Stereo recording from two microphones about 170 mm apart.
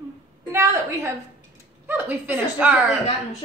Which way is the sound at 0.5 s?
15° right (ahead or behind).